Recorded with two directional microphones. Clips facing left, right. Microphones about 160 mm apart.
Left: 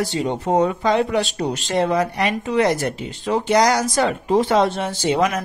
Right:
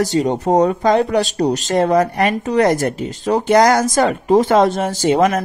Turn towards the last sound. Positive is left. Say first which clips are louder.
# right 5 dB
turn(degrees=-45)  # may be behind; listen again after turning